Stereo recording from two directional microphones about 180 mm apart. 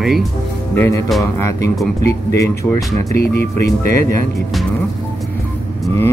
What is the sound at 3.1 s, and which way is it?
Speech, 60° left (ahead or behind).